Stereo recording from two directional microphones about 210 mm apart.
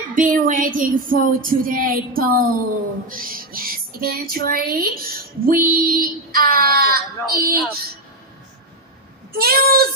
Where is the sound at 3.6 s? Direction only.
45° right (ahead or behind).